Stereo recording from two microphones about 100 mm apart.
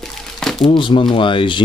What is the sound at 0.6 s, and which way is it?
Speech, 55° left (ahead or behind).